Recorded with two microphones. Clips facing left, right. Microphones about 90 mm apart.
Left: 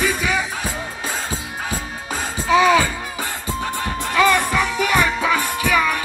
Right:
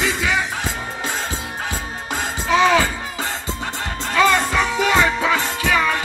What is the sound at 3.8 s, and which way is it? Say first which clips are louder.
Music: right 1 dB; 20° left (ahead or behind).